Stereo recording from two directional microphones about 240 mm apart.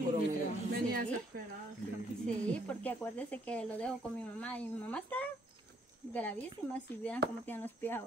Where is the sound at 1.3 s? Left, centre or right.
Right.